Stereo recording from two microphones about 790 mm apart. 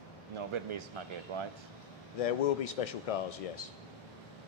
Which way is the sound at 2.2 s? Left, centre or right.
Left.